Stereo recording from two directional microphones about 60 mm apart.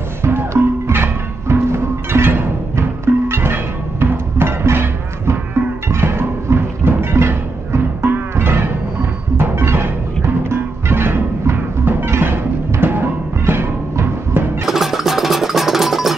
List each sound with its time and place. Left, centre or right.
0.2 s music: right
14.7 s music: centre